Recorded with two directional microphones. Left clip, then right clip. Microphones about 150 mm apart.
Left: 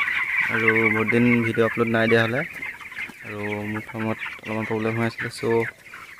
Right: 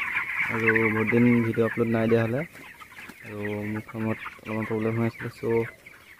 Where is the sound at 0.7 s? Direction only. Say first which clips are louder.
Left 4 dB; 25° left (ahead or behind).